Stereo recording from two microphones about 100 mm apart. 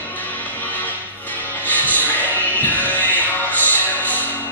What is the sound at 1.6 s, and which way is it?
Music, 15° left (ahead or behind).